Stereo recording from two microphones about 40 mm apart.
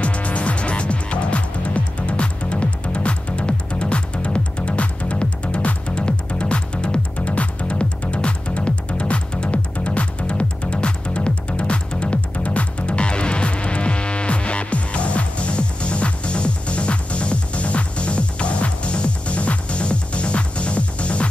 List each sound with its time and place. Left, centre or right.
0.0 s music: left